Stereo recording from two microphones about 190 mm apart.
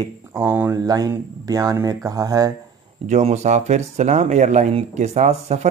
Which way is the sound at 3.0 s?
35° right (ahead or behind).